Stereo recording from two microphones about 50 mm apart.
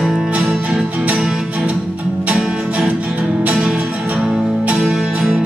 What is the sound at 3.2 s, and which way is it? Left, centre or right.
Music, right.